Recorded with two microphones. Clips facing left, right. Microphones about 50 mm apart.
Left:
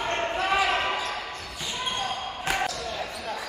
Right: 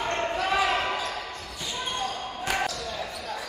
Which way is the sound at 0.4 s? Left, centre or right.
Left.